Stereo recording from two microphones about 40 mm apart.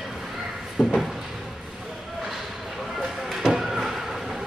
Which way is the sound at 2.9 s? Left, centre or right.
Centre.